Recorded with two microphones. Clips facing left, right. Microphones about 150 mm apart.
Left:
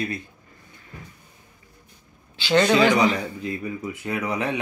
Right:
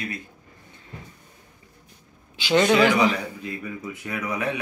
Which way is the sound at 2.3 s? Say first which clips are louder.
Even; 10° right (ahead or behind).